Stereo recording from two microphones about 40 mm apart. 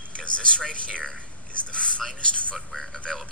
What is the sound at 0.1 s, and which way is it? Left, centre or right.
A man's voice, left.